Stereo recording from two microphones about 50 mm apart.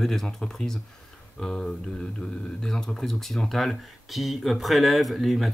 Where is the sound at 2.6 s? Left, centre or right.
Centre.